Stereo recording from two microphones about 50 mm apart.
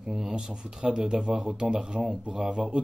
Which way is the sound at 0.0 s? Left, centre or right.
Centre.